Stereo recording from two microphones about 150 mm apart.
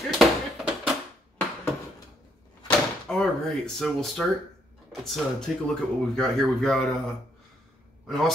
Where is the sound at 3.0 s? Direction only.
5° left (ahead or behind).